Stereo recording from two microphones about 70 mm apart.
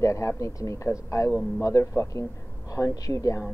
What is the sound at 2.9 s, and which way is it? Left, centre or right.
Speech, left.